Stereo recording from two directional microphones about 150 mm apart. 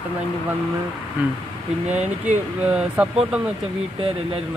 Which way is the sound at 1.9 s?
50° right (ahead or behind).